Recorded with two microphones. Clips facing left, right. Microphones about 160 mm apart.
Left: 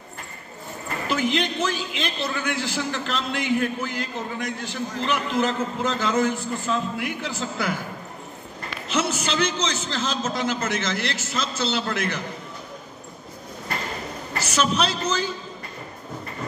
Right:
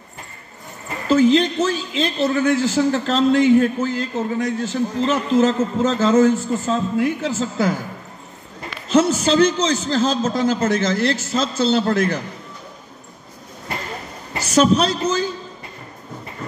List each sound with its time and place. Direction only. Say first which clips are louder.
1.0 s a man's voice: right 10 dB; 35° right (ahead or behind)
8.9 s a man's voice: right 9 dB; 35° right (ahead or behind)
14.5 s a man's voice: right 8 dB; 40° right (ahead or behind)